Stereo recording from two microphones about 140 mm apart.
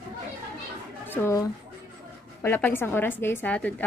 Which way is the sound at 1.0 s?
15° left (ahead or behind).